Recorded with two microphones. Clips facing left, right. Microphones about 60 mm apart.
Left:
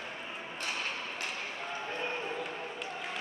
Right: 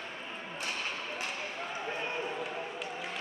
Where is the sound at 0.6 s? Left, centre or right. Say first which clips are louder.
Even; centre.